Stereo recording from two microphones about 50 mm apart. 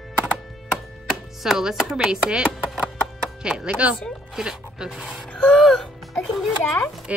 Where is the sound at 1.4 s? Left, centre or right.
Centre.